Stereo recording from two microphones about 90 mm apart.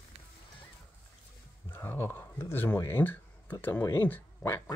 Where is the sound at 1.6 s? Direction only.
25° left (ahead or behind).